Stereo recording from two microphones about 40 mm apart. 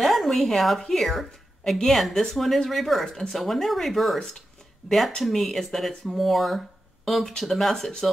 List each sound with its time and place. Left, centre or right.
0.0 s speech: centre